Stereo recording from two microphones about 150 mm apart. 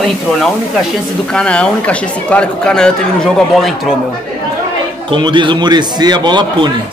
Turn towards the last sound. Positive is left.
turn(degrees=-30)  # may be behind; listen again after turning